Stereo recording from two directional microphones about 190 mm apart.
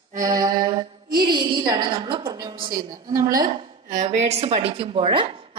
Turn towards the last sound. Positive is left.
turn(degrees=-25)  # may be behind; listen again after turning